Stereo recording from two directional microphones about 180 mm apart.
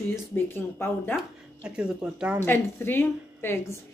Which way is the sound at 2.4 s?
10° left (ahead or behind).